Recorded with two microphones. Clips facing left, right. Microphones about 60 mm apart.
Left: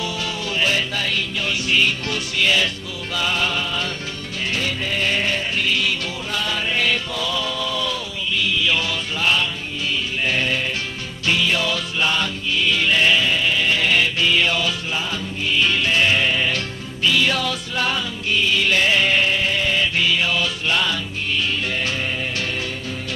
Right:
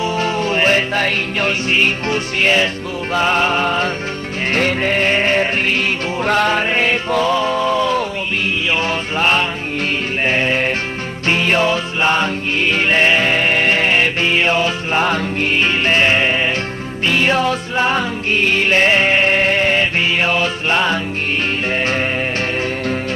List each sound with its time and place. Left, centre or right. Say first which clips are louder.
0.0 s music: right 8 dB; right
15.0 s music: right 9 dB; right